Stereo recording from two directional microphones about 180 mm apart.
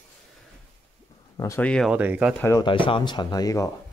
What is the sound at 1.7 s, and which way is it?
Speech, 5° left (ahead or behind).